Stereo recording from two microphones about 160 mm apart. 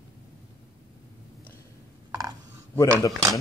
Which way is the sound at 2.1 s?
20° right (ahead or behind).